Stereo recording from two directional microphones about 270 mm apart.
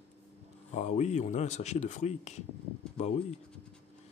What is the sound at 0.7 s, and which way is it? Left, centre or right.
Speech, left.